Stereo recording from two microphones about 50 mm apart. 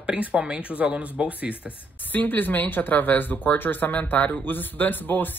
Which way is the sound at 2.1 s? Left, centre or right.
Left.